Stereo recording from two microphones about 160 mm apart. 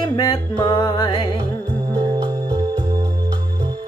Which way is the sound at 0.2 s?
25° left (ahead or behind).